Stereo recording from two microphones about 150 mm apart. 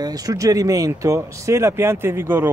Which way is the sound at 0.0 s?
25° right (ahead or behind).